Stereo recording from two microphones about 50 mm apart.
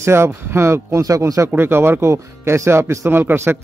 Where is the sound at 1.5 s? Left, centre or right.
Right.